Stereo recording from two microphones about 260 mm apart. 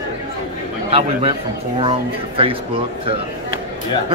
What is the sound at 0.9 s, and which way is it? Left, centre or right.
A man's voice, right.